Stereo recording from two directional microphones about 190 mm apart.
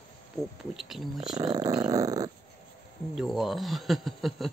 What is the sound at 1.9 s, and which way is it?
Dog, 20° right (ahead or behind).